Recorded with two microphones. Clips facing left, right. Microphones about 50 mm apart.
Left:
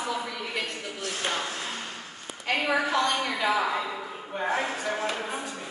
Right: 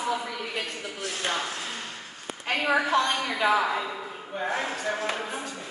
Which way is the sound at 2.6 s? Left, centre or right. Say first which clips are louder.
Right 3 dB; centre.